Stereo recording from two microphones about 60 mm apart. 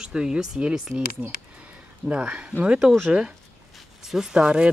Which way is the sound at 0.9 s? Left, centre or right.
Right.